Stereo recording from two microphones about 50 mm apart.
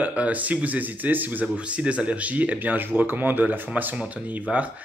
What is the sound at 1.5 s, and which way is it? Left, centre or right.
Speech, right.